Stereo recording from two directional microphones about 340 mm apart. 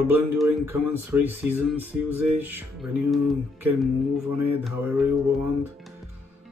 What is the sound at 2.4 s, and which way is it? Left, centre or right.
Speech, centre.